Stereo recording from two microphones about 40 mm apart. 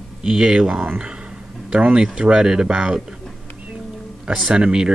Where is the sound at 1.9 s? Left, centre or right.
Right.